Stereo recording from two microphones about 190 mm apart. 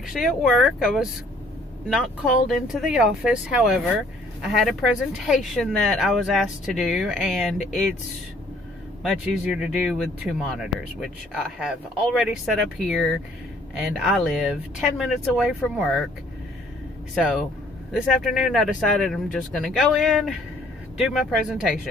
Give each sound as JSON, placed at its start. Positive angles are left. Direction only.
{"t": 0.0, "sound": "speech", "side_deg": 0}
{"t": 2.4, "sound": "speech", "side_deg": 0}
{"t": 9.1, "sound": "a man's voice", "side_deg": -5}
{"t": 17.1, "sound": "speech", "side_deg": 0}